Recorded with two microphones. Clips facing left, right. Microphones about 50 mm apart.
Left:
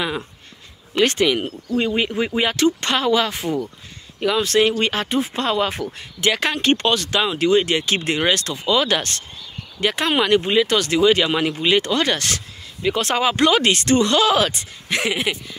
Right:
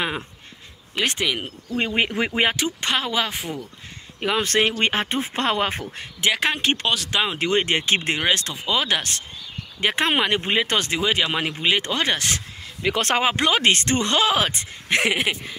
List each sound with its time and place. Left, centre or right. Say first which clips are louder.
0.9 s speech: left 6 dB; centre
2.1 s speech: left 1 dB; right
2.5 s speech: left 5 dB; centre
4.4 s speech: left 3 dB; right
6.2 s speech: left 2 dB; centre
7.2 s speech: left 6 dB; right; by 9.2 s centre
9.8 s speech: left 2 dB; right
10.9 s speech: left 6 dB; right
12.8 s speech: left 1 dB; right
13.4 s speech: left 4 dB; centre
13.7 s speech: left 3 dB; right